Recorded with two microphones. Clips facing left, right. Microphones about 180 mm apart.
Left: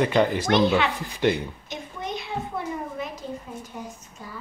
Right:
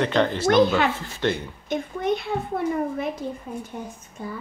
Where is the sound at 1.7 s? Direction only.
55° right (ahead or behind).